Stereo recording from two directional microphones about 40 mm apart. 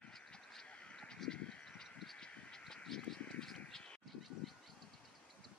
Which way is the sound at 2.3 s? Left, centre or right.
Left.